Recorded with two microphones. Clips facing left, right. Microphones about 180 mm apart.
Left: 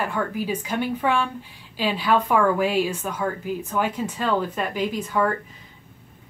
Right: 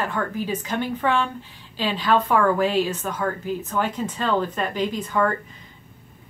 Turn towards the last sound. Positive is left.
turn(degrees=5)  # may be behind; listen again after turning